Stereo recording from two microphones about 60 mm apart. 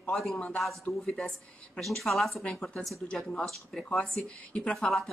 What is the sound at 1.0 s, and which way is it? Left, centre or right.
Speech, centre.